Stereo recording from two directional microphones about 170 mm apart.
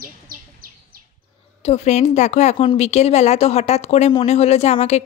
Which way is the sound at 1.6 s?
40° left (ahead or behind).